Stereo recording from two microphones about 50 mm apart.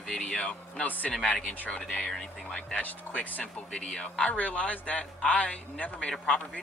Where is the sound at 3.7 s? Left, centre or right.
Centre.